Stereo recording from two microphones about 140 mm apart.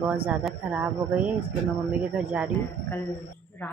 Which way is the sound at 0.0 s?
10° right (ahead or behind).